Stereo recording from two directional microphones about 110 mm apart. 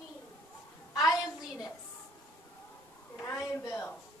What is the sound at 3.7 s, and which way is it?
Music, 20° left (ahead or behind).